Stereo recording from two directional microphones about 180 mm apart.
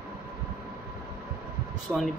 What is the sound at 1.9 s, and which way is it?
Speech, centre (ahead or behind).